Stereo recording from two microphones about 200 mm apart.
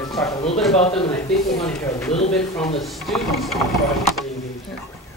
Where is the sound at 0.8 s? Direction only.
30° left (ahead or behind).